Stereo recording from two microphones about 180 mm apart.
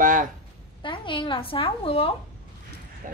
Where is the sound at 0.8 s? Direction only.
25° left (ahead or behind).